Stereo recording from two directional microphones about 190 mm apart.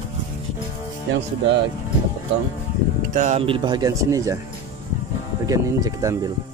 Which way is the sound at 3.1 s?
40° right (ahead or behind).